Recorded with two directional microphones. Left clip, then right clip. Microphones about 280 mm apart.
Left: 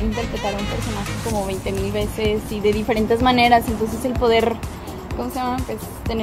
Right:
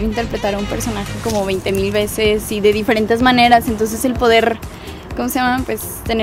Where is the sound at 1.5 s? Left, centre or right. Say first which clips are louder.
Right 7 dB; right.